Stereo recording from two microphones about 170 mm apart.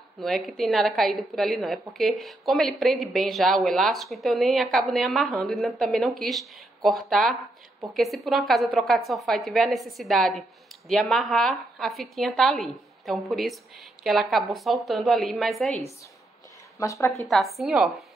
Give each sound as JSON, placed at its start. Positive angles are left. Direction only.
{"t": 0.2, "sound": "speech", "side_deg": 0}
{"t": 16.7, "sound": "speech", "side_deg": 20}
{"t": 17.3, "sound": "speech", "side_deg": 0}